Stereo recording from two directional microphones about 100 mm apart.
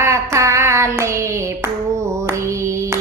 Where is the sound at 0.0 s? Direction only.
30° right (ahead or behind).